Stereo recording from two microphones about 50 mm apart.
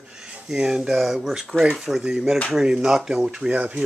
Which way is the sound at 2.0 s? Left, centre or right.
Centre.